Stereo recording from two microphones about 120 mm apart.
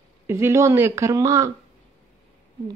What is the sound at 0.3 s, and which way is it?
Speech, 25° right (ahead or behind).